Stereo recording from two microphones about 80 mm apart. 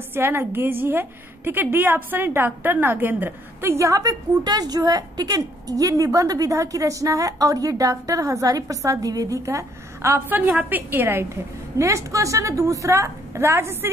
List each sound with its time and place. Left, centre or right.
0.1 s a woman's voice: right
3.8 s a woman's voice: right
10.6 s a woman's voice: right
11.8 s a woman's voice: right